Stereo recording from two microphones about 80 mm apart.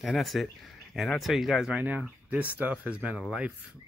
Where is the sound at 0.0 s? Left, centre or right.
Centre.